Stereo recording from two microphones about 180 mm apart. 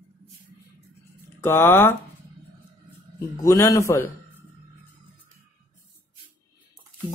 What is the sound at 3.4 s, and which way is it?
Speech, 15° left (ahead or behind).